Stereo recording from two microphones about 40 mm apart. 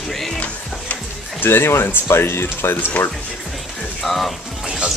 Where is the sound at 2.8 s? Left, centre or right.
Left.